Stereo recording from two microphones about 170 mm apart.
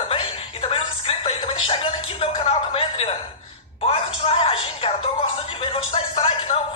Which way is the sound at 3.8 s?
35° left (ahead or behind).